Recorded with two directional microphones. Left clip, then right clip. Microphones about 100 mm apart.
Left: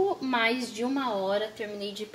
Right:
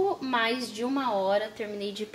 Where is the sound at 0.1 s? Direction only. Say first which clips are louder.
Even; centre (ahead or behind).